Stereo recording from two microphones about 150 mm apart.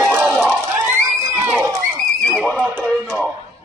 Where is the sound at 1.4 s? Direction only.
15° right (ahead or behind).